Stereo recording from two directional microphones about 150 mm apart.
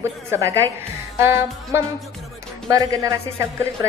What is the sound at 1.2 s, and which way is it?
Music, 15° right (ahead or behind).